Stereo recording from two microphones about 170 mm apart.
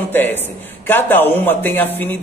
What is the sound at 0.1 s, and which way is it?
A man's voice, 10° left (ahead or behind).